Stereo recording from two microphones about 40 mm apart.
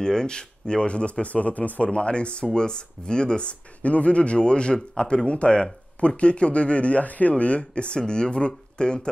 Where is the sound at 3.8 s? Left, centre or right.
Left.